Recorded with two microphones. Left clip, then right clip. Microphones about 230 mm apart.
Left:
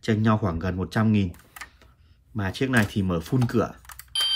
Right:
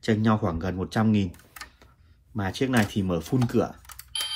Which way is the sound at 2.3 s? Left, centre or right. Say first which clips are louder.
Left 1 dB; centre.